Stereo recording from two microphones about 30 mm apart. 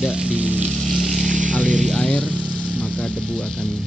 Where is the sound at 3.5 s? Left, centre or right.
Left.